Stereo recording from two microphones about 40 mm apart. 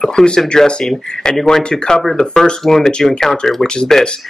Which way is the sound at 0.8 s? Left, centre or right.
Centre.